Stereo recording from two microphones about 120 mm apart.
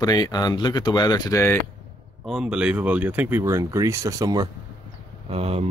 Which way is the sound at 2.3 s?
5° right (ahead or behind).